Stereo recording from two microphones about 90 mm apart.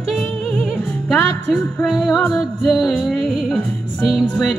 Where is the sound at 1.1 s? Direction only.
Centre (ahead or behind).